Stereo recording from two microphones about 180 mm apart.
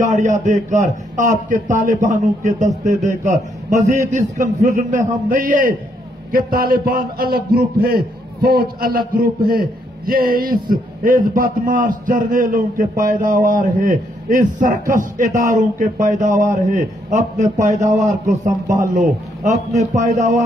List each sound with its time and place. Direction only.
0.0 s a man's voice: 40° right (ahead or behind)
11.1 s a man's voice: 45° right (ahead or behind)